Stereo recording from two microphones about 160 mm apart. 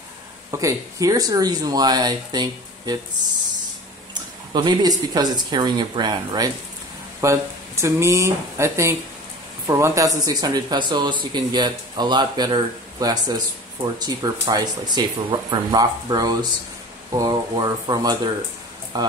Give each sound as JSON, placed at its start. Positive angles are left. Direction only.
{"t": 0.5, "sound": "speech", "side_deg": -20}
{"t": 4.1, "sound": "speech", "side_deg": -25}